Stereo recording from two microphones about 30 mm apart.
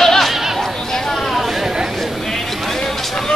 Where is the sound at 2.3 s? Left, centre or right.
Centre.